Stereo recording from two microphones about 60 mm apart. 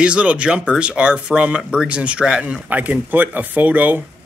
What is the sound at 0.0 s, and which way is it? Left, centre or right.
Speech, centre.